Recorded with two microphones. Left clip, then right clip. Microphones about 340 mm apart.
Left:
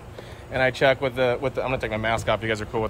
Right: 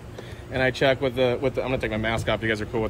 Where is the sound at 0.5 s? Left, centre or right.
Centre.